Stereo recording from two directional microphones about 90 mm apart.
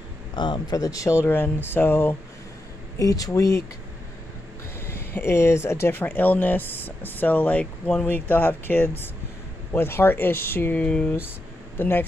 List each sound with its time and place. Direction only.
0.4 s speech: 60° left (ahead or behind)
0.7 s speech: 40° left (ahead or behind)
3.0 s speech: 40° left (ahead or behind)
4.7 s speech: 30° left (ahead or behind)